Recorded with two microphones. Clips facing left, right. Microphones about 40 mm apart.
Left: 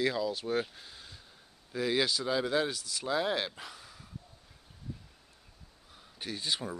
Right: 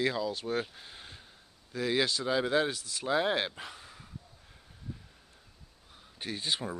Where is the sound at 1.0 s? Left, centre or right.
Right.